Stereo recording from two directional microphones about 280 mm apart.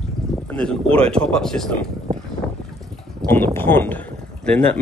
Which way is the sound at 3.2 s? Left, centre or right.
Centre.